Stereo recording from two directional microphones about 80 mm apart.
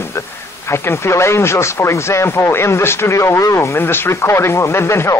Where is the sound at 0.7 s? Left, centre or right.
Left.